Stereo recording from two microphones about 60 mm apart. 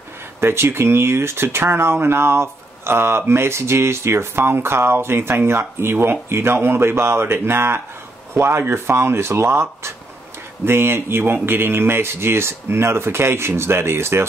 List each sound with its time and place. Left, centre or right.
0.4 s speech: right